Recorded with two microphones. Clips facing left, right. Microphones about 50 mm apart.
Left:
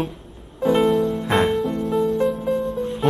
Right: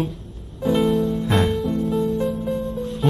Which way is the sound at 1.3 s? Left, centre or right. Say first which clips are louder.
Left 3 dB; centre.